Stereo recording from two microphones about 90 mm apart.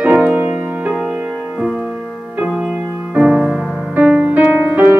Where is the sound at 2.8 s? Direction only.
20° right (ahead or behind).